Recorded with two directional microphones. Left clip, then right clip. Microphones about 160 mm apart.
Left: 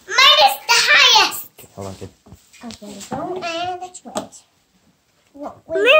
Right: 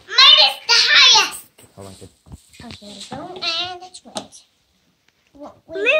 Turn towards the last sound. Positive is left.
turn(degrees=10)  # may be behind; listen again after turning